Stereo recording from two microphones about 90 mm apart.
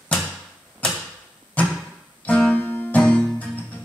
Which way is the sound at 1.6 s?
15° left (ahead or behind).